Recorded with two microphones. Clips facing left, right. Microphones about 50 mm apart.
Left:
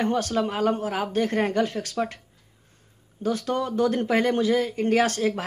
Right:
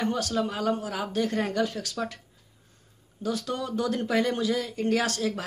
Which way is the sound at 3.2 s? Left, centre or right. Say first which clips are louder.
Left 5 dB; left.